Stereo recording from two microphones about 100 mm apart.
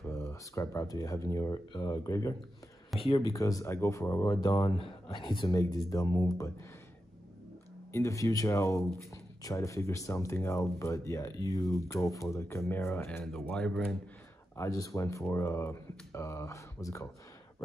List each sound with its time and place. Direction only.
0.0 s speech: 30° left (ahead or behind)
1.7 s speech: 40° left (ahead or behind)
4.4 s speech: 45° left (ahead or behind)
5.5 s speech: 30° left (ahead or behind)
7.9 s speech: 30° left (ahead or behind)
13.2 s speech: 10° left (ahead or behind)
14.6 s speech: 30° left (ahead or behind)